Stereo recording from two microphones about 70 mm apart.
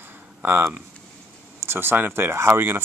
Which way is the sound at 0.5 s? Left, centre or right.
Right.